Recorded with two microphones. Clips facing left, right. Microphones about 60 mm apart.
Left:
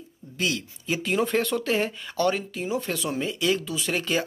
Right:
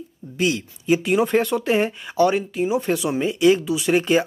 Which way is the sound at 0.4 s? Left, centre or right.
Right.